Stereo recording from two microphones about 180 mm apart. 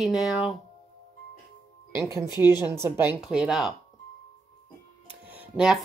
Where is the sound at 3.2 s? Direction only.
5° right (ahead or behind).